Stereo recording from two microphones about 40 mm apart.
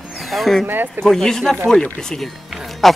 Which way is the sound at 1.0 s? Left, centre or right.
Centre.